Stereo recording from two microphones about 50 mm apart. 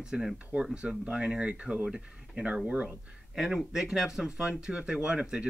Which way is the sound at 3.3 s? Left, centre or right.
Centre.